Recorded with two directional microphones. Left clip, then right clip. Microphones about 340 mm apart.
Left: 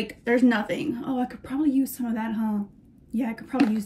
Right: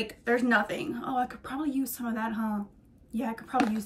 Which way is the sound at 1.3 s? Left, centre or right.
Right.